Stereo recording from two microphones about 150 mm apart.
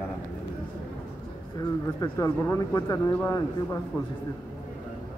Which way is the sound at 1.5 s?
25° left (ahead or behind).